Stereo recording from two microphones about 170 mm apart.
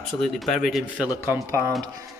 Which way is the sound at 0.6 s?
Centre (ahead or behind).